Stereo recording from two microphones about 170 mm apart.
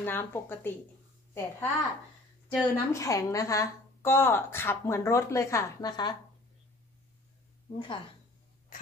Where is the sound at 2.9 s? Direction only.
20° left (ahead or behind).